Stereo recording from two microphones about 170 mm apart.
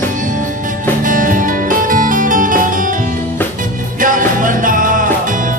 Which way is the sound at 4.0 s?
50° right (ahead or behind).